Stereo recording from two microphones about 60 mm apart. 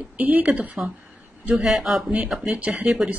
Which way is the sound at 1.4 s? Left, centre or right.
Centre.